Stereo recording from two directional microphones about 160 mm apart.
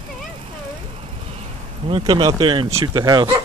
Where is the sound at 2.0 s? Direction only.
25° right (ahead or behind).